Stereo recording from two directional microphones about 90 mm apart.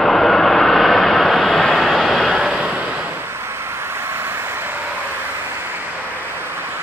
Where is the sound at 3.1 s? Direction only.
30° right (ahead or behind).